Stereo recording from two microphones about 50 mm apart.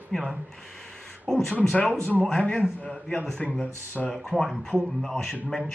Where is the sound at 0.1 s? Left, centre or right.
Centre.